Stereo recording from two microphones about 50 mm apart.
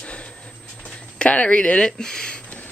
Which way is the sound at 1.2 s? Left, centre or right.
Left.